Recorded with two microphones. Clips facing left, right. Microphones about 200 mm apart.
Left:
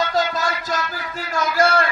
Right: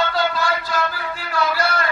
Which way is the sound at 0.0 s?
45° left (ahead or behind).